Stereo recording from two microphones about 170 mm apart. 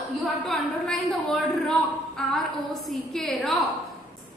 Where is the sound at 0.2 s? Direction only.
Centre (ahead or behind).